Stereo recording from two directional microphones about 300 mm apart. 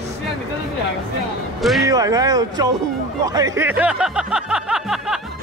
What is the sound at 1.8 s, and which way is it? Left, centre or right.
Speech, centre.